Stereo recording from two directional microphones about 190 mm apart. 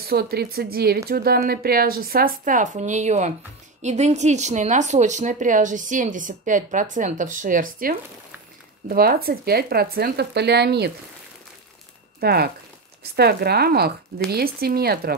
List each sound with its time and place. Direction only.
0.0 s a woman's voice: 55° right (ahead or behind)
12.2 s speech: 55° right (ahead or behind)